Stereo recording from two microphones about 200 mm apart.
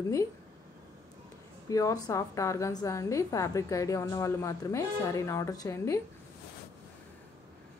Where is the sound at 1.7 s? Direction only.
15° left (ahead or behind).